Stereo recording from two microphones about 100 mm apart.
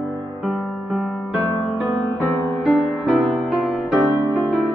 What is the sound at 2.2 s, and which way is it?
Music, 20° left (ahead or behind).